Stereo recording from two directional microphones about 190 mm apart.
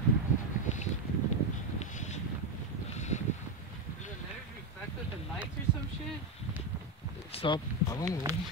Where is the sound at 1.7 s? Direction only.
35° left (ahead or behind).